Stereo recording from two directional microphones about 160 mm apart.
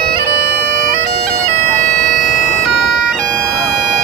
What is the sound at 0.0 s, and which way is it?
Bagpipes, 90° right.